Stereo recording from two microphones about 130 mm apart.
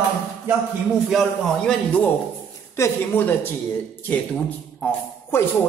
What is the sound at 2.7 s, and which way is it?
Speech, 20° left (ahead or behind).